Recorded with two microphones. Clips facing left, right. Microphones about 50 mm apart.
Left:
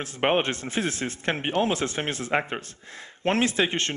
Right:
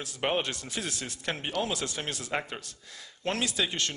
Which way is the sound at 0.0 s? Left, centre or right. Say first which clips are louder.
Left 6 dB; left.